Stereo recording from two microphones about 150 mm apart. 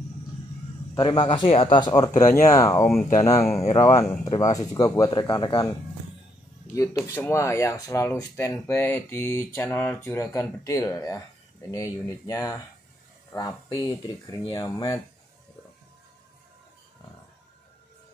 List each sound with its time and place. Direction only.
0.9 s speech: 30° left (ahead or behind)